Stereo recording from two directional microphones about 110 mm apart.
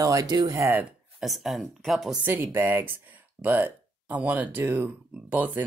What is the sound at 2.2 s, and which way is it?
Speech, 20° right (ahead or behind).